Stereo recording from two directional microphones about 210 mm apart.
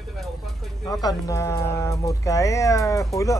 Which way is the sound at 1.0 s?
15° left (ahead or behind).